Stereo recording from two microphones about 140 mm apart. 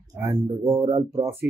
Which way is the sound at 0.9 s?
25° right (ahead or behind).